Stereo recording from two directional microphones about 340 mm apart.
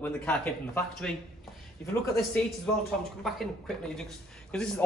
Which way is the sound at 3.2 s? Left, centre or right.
Centre.